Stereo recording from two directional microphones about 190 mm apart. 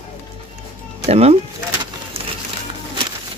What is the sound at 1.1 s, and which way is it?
Speech, 30° right (ahead or behind).